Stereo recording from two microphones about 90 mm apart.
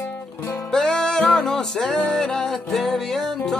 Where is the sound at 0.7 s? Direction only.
5° left (ahead or behind).